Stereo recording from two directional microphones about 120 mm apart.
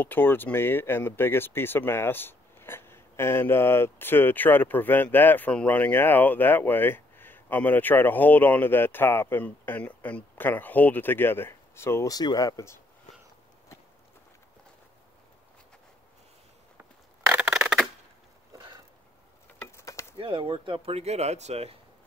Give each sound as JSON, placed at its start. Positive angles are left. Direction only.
{"t": 0.0, "sound": "speech", "side_deg": 15}
{"t": 17.3, "sound": "scissors", "side_deg": -10}
{"t": 19.8, "sound": "stir", "side_deg": 25}
{"t": 20.2, "sound": "speech", "side_deg": -45}